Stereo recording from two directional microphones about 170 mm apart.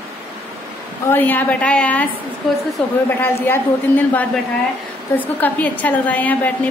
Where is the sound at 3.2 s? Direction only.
10° left (ahead or behind).